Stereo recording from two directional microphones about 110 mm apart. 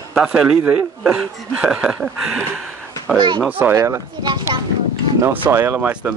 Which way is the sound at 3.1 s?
45° right (ahead or behind).